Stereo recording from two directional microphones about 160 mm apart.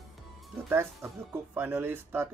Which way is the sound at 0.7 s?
15° right (ahead or behind).